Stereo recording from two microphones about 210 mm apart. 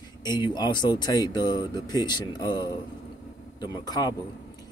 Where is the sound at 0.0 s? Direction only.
20° left (ahead or behind).